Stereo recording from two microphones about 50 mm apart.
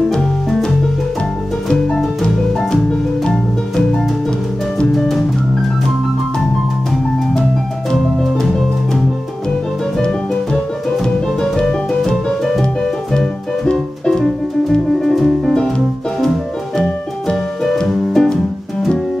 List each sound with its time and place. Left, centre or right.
2.7 s music: centre
4.9 s music: centre
7.9 s music: centre
9.9 s music: centre
17.6 s music: centre